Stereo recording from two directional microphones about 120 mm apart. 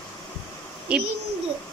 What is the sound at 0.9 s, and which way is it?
Speech, 10° right (ahead or behind).